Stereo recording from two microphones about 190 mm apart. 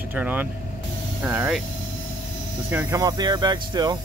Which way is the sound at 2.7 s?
10° right (ahead or behind).